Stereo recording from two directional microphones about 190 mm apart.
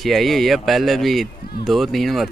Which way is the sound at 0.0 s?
Centre (ahead or behind).